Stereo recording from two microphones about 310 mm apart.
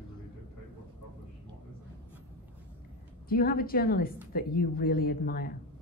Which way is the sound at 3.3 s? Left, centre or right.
Left.